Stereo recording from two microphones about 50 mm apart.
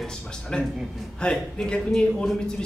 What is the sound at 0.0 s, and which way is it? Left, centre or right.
Speech, centre.